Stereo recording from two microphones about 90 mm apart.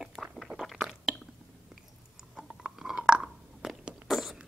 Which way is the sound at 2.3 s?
5° right (ahead or behind).